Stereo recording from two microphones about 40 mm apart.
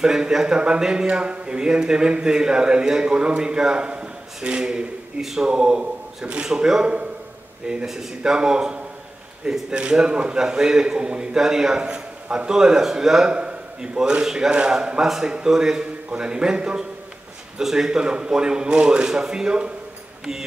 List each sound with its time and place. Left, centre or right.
0.0 s a man's voice: centre
6.4 s a man's voice: centre